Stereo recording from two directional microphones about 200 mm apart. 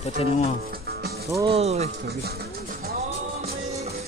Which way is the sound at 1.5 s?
30° right (ahead or behind).